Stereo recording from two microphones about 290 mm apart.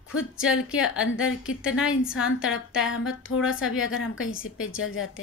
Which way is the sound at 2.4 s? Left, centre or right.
Left.